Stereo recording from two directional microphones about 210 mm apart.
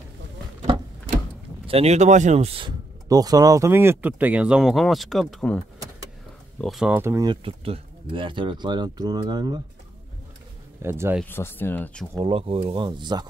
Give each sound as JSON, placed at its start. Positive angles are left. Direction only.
{"t": 0.7, "sound": "a sound", "side_deg": -25}
{"t": 1.7, "sound": "speech", "side_deg": -30}
{"t": 6.6, "sound": "speech", "side_deg": 0}
{"t": 7.4, "sound": "speech", "side_deg": -25}
{"t": 10.8, "sound": "speech", "side_deg": -10}
{"t": 11.2, "sound": "speech", "side_deg": 10}
{"t": 12.1, "sound": "speech", "side_deg": -25}